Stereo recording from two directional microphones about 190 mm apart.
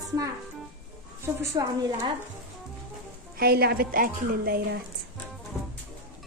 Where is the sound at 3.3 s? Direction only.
55° right (ahead or behind).